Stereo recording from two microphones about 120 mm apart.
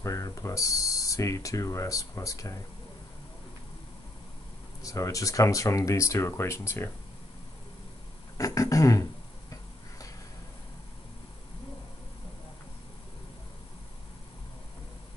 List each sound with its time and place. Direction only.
0.0 s speech: 25° left (ahead or behind)
4.8 s speech: 25° left (ahead or behind)
8.4 s speech: 30° left (ahead or behind)